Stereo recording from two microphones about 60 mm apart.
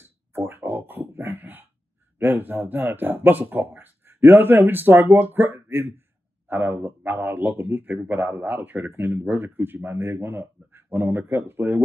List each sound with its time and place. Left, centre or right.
0.0 s throat clearing: right
2.1 s speech: right